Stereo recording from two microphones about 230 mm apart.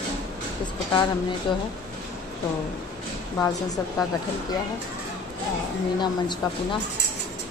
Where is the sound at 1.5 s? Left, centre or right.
Centre.